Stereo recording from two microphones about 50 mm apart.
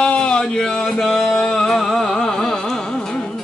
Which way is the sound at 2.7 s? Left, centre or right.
Centre.